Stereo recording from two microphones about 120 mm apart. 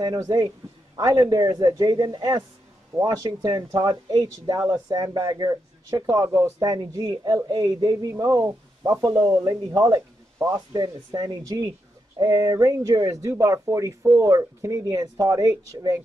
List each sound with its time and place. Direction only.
0.0 s speech: 35° right (ahead or behind)
8.2 s speech: 25° right (ahead or behind)